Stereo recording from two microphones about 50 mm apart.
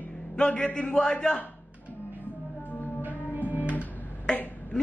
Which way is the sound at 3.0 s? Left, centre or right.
Right.